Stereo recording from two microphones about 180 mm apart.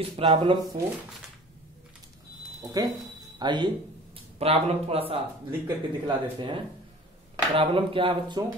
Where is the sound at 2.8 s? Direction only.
20° right (ahead or behind).